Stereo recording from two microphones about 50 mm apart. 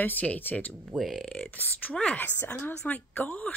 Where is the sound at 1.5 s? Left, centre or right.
Left.